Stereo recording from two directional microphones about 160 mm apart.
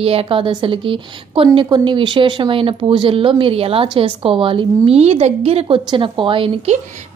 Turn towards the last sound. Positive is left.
turn(degrees=-35)  # may be behind; listen again after turning